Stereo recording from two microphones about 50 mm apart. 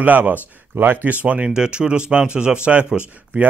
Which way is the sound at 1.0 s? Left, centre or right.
Right.